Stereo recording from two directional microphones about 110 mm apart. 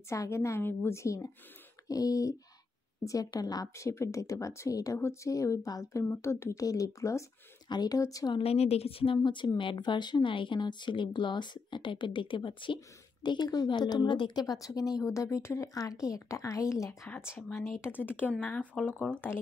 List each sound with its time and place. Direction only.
0.1 s speech: 25° left (ahead or behind)
8.4 s a woman's voice: 65° left (ahead or behind); by 19.4 s 20° left (ahead or behind)